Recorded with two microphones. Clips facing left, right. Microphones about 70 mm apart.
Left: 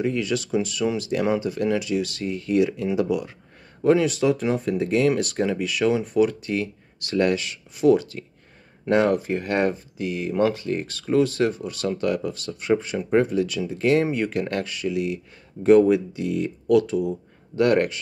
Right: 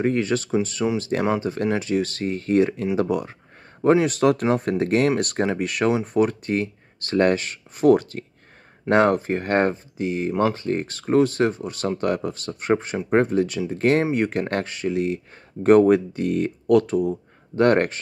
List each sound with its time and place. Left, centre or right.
0.0 s speech: right
4.1 s speech: right
15.6 s speech: right